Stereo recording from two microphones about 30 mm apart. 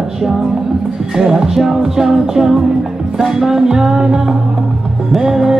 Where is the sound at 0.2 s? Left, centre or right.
Centre.